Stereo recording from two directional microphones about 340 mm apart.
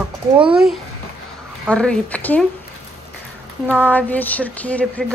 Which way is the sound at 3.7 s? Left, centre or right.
Centre.